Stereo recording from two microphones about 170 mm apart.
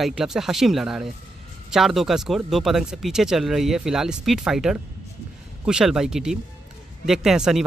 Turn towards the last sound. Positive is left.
turn(degrees=0)  # may be behind; listen again after turning